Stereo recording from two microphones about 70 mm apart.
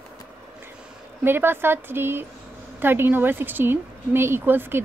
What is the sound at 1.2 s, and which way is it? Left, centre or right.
Speech, right.